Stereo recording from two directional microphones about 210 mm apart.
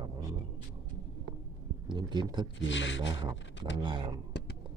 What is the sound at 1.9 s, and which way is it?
Speech, 20° right (ahead or behind).